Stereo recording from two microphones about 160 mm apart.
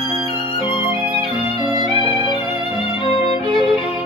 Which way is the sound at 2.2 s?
35° left (ahead or behind).